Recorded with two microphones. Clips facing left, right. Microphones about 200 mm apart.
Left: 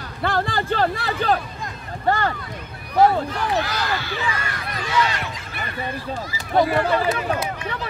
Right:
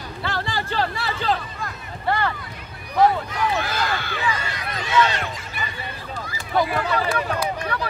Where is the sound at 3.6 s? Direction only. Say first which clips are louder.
Even; 50° right (ahead or behind).